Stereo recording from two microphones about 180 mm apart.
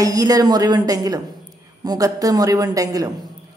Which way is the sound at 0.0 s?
20° right (ahead or behind).